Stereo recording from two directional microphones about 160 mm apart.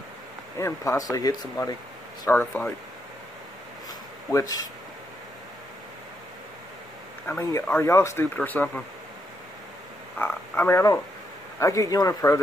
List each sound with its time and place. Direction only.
0.6 s speech: 15° left (ahead or behind)
2.2 s speech: 10° left (ahead or behind)
4.3 s speech: 20° left (ahead or behind)
7.2 s speech: 15° left (ahead or behind)
10.1 s speech: 10° left (ahead or behind)